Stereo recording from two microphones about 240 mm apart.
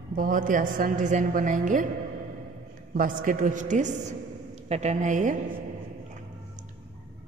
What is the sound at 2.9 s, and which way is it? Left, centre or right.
A woman's voice, right.